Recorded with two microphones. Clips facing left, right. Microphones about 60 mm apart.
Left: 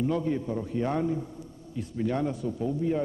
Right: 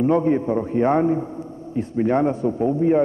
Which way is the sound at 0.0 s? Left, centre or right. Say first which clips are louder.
Right 10 dB; right.